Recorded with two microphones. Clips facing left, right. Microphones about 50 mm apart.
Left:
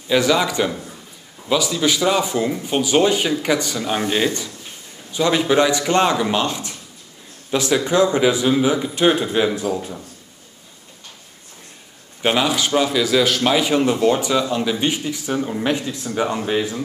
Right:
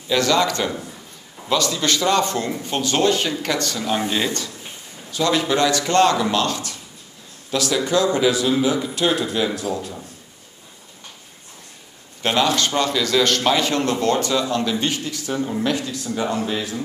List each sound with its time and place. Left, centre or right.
0.1 s a man's voice: centre
12.2 s a man's voice: centre